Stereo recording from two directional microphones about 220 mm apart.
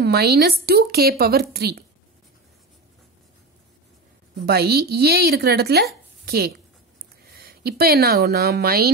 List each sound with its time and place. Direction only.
0.0 s a woman's voice: 45° right (ahead or behind)
4.5 s a woman's voice: 45° right (ahead or behind)